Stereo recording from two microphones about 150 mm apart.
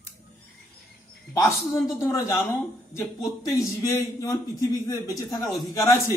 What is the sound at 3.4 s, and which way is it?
A man's voice, 20° left (ahead or behind).